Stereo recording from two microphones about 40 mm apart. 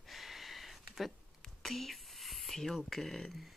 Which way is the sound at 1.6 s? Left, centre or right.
Centre.